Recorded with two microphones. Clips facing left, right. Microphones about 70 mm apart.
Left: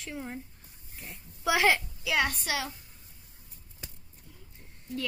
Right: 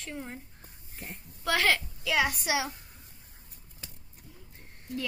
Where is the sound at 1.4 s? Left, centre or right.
Centre.